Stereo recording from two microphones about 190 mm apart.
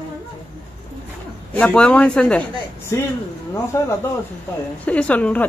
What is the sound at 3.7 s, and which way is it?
Speech, 15° left (ahead or behind).